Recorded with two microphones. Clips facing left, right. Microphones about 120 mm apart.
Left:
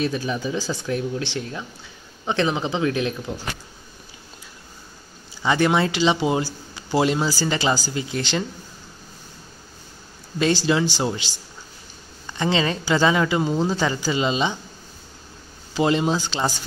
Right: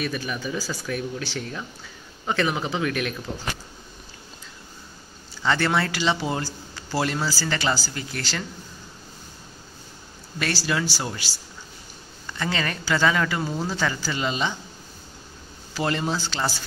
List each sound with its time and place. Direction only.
0.0 s a man's voice: 25° left (ahead or behind)
5.4 s a man's voice: 15° left (ahead or behind)
10.4 s a man's voice: 20° left (ahead or behind)
15.7 s a man's voice: 20° left (ahead or behind)